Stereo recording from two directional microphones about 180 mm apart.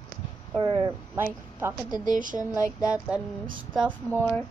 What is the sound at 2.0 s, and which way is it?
Speech, 45° right (ahead or behind).